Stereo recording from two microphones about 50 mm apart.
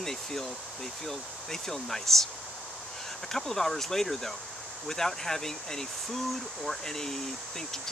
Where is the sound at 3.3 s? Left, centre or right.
Centre.